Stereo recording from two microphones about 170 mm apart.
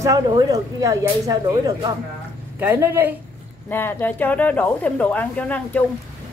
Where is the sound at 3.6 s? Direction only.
10° left (ahead or behind).